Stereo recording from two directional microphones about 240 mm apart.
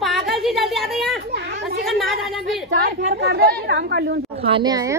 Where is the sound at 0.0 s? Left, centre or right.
Centre.